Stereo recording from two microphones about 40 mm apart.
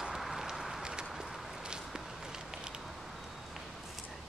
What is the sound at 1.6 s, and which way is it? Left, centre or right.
Walk, right.